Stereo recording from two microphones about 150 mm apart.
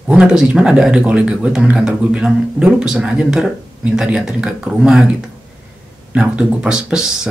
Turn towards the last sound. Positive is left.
turn(degrees=-5)  # may be behind; listen again after turning